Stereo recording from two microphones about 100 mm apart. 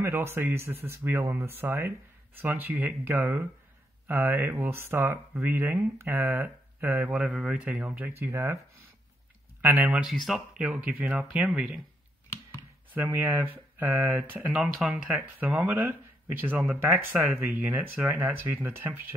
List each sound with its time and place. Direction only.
0.0 s speech: 25° right (ahead or behind)
7.2 s speech: 10° right (ahead or behind); by 8.5 s 25° right (ahead or behind)
9.6 s speech: 20° right (ahead or behind)
10.0 s speech: centre (ahead or behind)
12.9 s speech: 20° right (ahead or behind)
14.6 s speech: 5° right (ahead or behind)
15.1 s speech: 20° right (ahead or behind)